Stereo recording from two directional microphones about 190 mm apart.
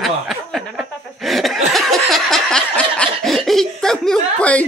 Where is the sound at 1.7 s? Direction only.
Centre (ahead or behind).